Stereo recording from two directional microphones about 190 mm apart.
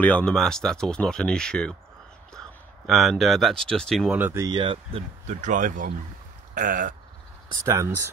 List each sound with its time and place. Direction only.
0.0 s speech: 5° left (ahead or behind)
2.9 s speech: centre (ahead or behind)
4.2 s speech: 15° right (ahead or behind); by 7.0 s 45° right (ahead or behind)
7.6 s speech: 15° right (ahead or behind)